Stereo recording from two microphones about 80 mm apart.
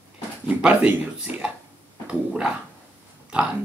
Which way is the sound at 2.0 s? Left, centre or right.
Centre.